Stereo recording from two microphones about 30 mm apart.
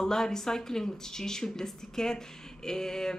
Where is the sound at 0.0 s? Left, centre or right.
Centre.